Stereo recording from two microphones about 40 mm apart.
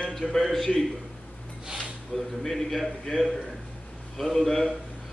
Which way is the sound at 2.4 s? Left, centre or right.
Centre.